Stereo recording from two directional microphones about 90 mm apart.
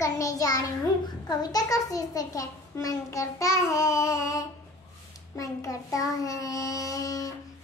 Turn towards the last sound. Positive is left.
turn(degrees=40)  # may be behind; listen again after turning